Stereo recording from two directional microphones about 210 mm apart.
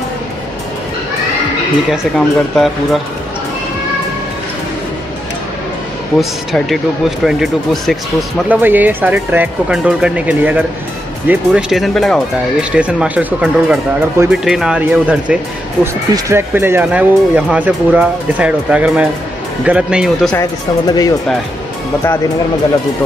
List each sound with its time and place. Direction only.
1.9 s speech: centre (ahead or behind)
6.1 s speech: centre (ahead or behind)
20.3 s speech: 20° left (ahead or behind)